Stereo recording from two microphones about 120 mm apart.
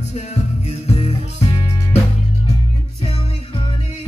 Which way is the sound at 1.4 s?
30° left (ahead or behind).